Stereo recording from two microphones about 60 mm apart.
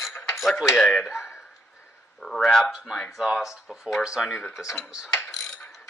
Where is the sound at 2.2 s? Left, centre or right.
Centre.